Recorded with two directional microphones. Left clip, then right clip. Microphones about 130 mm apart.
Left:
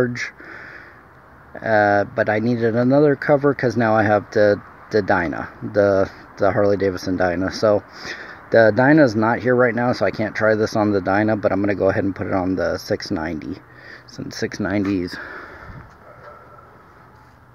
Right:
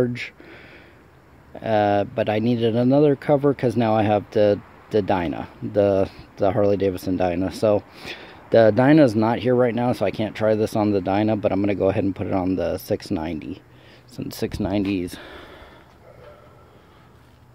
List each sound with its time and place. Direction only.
0.0 s speech: 25° right (ahead or behind)
1.5 s speech: 25° right (ahead or behind)
14.3 s speech: 25° right (ahead or behind)
14.8 s speech: 35° left (ahead or behind)
15.0 s a sound: 15° right (ahead or behind)